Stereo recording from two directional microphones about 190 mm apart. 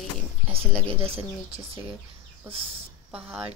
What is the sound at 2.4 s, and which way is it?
Speech, 30° right (ahead or behind).